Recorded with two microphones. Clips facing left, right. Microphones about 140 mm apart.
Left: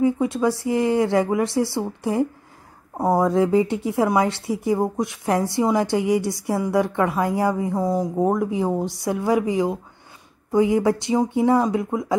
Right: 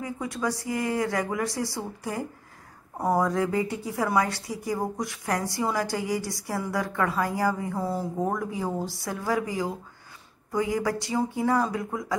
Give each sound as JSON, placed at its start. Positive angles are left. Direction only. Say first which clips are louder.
{"t": 0.0, "sound": "speech", "louder": "left 10 dB", "side_deg": 25}